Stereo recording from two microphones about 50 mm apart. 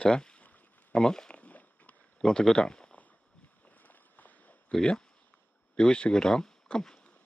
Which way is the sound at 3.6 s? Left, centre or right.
Left.